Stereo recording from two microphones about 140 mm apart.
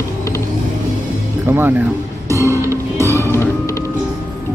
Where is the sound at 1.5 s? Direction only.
15° right (ahead or behind).